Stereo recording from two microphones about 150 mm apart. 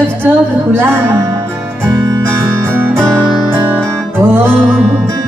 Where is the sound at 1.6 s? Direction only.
15° right (ahead or behind).